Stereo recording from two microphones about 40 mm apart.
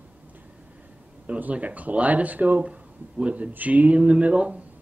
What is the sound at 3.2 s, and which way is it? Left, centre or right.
Speech, right.